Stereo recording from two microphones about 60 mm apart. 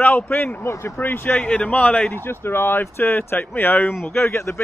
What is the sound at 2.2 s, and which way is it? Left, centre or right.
Speech, left.